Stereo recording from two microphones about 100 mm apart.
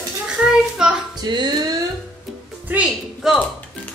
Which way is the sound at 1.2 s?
45° right (ahead or behind).